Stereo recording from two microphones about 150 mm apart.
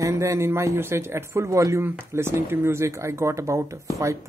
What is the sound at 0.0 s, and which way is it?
A man's voice, 20° right (ahead or behind).